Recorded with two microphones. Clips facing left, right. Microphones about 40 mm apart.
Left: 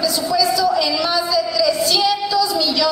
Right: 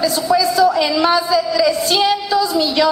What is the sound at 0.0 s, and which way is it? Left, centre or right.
A man's voice, right.